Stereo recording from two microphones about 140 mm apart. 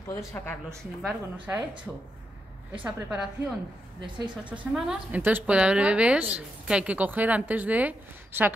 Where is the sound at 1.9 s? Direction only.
5° right (ahead or behind).